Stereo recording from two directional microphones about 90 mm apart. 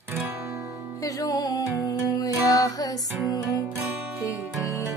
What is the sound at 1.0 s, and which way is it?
Music, 45° left (ahead or behind).